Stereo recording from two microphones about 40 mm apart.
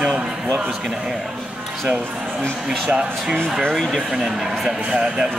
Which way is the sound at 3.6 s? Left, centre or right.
Centre.